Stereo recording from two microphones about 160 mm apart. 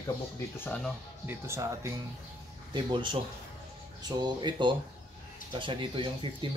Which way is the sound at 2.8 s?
30° right (ahead or behind).